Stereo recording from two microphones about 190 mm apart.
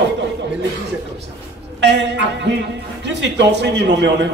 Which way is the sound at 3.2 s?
65° right (ahead or behind).